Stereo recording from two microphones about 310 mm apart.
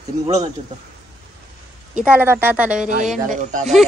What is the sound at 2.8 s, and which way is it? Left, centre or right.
Speech, right.